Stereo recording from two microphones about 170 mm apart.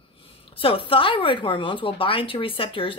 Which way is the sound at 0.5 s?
30° left (ahead or behind).